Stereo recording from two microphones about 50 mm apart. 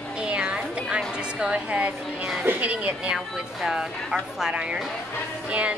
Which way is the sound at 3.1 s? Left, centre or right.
Centre.